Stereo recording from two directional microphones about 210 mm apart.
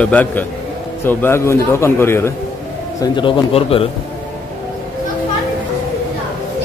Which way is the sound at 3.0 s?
20° left (ahead or behind).